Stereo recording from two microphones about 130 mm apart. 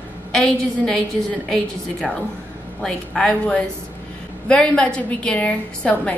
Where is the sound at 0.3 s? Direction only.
5° left (ahead or behind).